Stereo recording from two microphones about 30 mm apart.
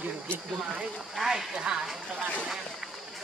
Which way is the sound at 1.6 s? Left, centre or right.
Right.